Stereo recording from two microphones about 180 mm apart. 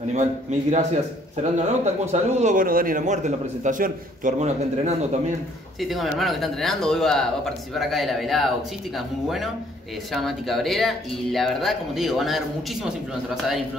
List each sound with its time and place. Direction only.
0.1 s a man's voice: 40° right (ahead or behind)
5.8 s speech: centre (ahead or behind)